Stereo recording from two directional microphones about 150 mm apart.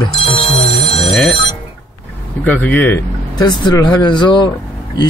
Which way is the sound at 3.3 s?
30° left (ahead or behind).